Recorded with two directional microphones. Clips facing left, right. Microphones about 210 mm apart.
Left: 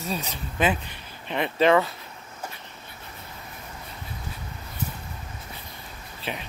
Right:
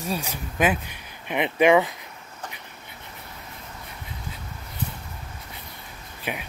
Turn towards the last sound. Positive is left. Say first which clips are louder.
# right 1 dB
turn(degrees=-10)  # may be behind; listen again after turning